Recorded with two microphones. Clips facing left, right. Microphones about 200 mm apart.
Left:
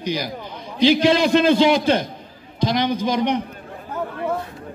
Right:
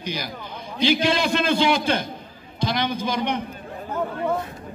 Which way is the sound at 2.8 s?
15° left (ahead or behind).